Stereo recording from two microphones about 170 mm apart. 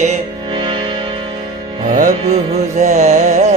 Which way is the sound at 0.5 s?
25° right (ahead or behind).